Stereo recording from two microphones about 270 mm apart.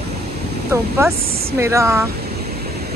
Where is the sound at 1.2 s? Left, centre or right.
Right.